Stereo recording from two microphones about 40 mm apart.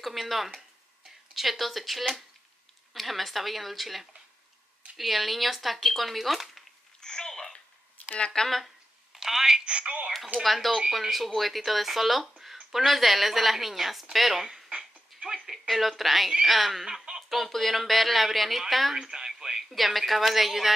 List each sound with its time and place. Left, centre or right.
0.0 s speech: centre
7.0 s babbling: centre
8.2 s speech: centre
8.5 s speech: centre
9.7 s speech: right
10.4 s speech: centre
17.3 s speech: centre
18.9 s speech: centre
19.7 s speech: centre